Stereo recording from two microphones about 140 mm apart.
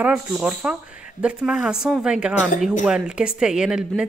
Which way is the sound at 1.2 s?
5° right (ahead or behind).